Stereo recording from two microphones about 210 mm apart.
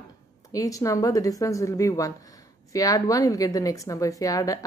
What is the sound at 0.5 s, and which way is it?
A woman's voice, 15° left (ahead or behind).